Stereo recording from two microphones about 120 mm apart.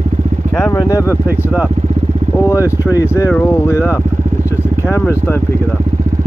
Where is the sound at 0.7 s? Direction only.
30° left (ahead or behind).